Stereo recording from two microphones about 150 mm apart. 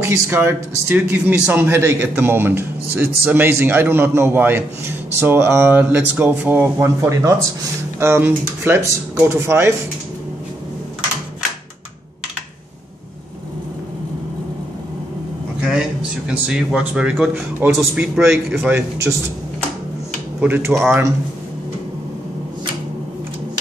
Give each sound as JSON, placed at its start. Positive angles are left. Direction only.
{"t": 0.0, "sound": "a man's voice", "side_deg": -15}
{"t": 16.3, "sound": "a man's voice", "side_deg": -5}
{"t": 18.7, "sound": "a man's voice", "side_deg": -15}
{"t": 20.3, "sound": "a man's voice", "side_deg": -10}